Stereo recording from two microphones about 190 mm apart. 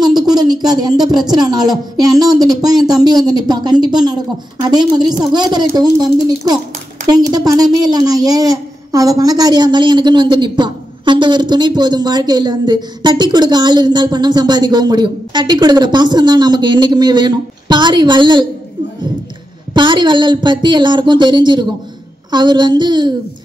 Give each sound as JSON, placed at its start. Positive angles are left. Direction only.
{"t": 0.0, "sound": "a woman's voice", "side_deg": -20}
{"t": 19.7, "sound": "a woman's voice", "side_deg": -25}